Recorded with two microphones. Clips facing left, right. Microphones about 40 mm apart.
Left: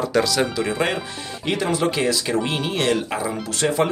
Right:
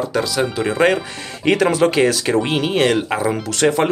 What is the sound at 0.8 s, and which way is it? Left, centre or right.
Speech, right.